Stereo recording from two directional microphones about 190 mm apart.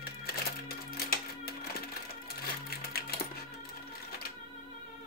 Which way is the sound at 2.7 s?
55° left (ahead or behind).